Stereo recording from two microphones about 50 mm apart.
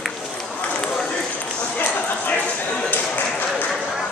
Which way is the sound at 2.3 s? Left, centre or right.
Left.